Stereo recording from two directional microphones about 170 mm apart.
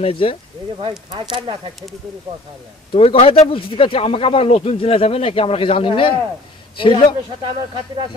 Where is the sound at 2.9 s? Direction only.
35° left (ahead or behind).